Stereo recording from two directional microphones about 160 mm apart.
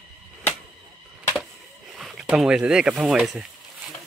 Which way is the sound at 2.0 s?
5° right (ahead or behind).